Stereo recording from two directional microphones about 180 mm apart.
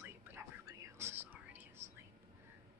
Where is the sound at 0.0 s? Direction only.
15° right (ahead or behind).